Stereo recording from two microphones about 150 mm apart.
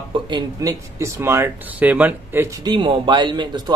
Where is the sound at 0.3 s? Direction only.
20° right (ahead or behind).